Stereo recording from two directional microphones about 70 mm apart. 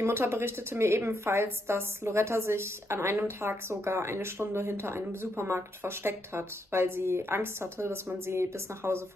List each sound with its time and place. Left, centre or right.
0.0 s speech: right